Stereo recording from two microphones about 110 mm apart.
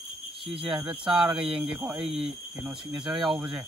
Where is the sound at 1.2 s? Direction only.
50° right (ahead or behind).